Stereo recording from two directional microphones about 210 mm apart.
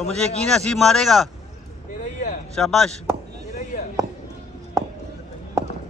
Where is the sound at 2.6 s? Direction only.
Centre (ahead or behind).